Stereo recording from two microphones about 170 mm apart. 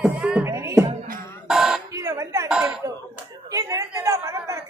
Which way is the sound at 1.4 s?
5° right (ahead or behind).